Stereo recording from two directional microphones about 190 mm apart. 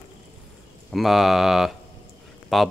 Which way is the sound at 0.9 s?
Centre (ahead or behind).